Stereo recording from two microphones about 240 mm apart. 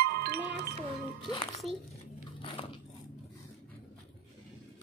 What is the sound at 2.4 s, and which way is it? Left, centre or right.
Biting, left.